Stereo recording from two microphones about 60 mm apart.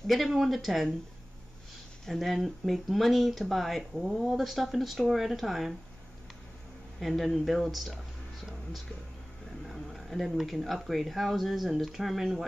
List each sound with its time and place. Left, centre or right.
0.0 s speech: centre
2.0 s speech: centre
7.0 s speech: centre
9.7 s speech: centre